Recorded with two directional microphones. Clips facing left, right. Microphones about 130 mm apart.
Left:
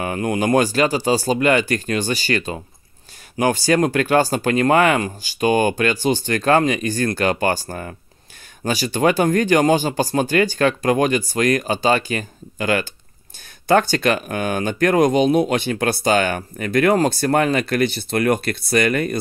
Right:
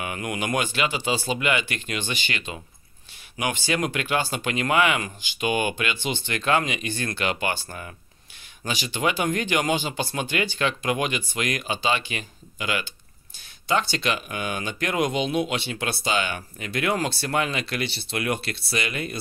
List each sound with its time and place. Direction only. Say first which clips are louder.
0.0 s speech: left 9 dB; 35° left (ahead or behind)